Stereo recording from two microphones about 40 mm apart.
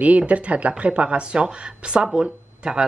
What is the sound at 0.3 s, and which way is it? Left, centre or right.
Speech, right.